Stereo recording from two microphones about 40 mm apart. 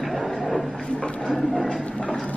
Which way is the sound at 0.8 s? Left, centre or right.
Left.